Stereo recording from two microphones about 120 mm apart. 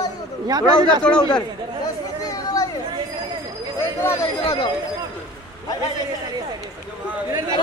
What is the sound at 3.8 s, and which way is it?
Speech, 20° left (ahead or behind).